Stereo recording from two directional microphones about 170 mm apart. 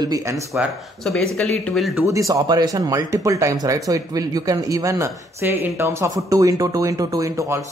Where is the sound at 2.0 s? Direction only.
20° right (ahead or behind).